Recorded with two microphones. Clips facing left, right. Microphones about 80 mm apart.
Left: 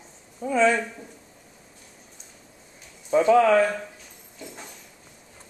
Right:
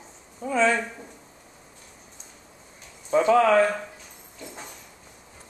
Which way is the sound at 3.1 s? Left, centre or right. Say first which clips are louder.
Left 1 dB; centre.